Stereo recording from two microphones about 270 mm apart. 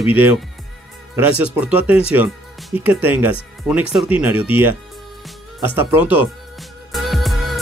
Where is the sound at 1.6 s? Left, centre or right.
Centre.